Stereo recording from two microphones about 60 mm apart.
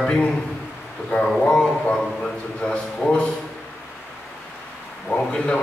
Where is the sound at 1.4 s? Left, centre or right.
Centre.